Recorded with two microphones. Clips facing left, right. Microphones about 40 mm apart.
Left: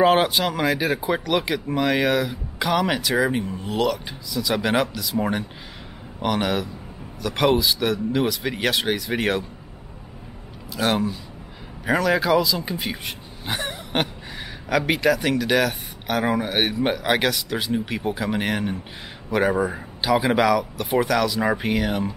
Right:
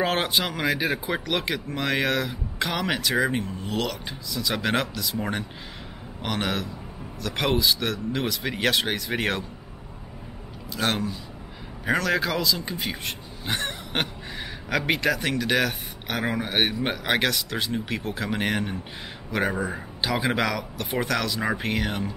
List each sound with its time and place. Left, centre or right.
0.0 s speech: centre
10.7 s speech: centre